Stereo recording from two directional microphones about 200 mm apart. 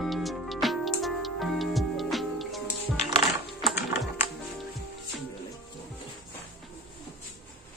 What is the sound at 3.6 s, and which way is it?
Typing, centre (ahead or behind).